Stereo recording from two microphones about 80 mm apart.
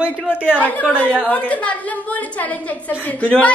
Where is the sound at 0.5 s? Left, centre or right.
Centre.